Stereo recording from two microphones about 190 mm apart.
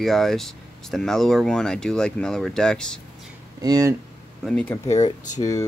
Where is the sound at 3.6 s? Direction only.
20° right (ahead or behind).